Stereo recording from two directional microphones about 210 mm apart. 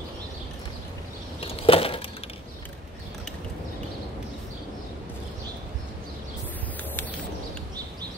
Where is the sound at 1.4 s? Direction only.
25° left (ahead or behind).